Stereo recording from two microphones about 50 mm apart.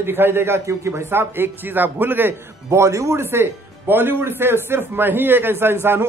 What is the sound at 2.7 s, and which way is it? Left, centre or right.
Speech, right.